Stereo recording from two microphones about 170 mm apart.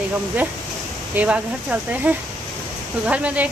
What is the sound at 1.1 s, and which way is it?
Speech, 5° right (ahead or behind).